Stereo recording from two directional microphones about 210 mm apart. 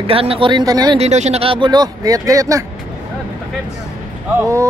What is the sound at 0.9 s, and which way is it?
Speech, 30° right (ahead or behind).